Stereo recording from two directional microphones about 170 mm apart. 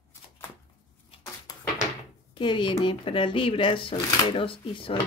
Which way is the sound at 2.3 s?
30° left (ahead or behind).